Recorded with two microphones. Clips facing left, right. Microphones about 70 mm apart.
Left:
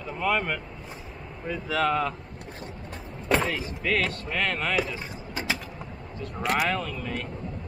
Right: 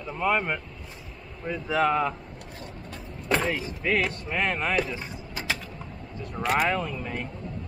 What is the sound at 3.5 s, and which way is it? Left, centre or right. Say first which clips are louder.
Speech: right 1 dB; centre.